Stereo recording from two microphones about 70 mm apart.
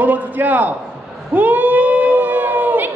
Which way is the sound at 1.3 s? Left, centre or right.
Right.